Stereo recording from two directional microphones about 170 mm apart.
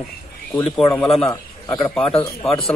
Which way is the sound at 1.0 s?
Centre (ahead or behind).